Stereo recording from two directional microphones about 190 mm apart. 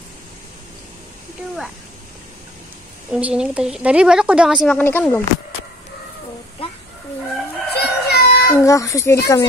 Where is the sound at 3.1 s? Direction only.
5° right (ahead or behind).